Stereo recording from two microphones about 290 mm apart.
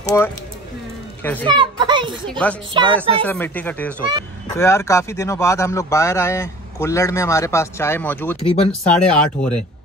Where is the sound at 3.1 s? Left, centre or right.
Centre.